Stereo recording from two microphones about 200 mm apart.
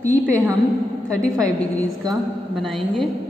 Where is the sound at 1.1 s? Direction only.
5° left (ahead or behind).